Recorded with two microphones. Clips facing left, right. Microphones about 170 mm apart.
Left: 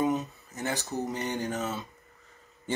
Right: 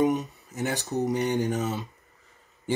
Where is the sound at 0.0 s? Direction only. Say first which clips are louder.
Right 4 dB; 15° right (ahead or behind).